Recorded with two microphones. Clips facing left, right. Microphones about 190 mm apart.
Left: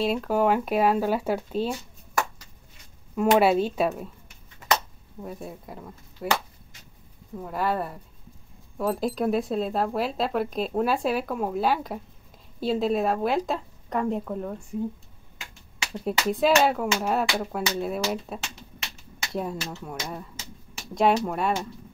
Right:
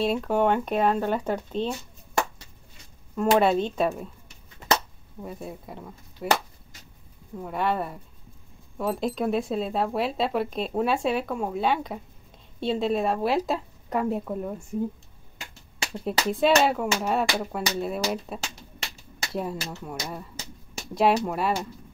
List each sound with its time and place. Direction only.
0.0 s speech: centre (ahead or behind)
3.3 s speech: 5° left (ahead or behind)
5.2 s speech: centre (ahead or behind)
15.9 s speech: centre (ahead or behind)
18.4 s a sound: 35° right (ahead or behind)
19.3 s speech: centre (ahead or behind)